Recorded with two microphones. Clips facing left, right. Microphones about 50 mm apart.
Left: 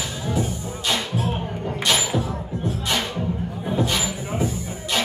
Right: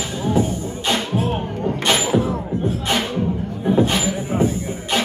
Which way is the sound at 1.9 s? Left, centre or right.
Centre.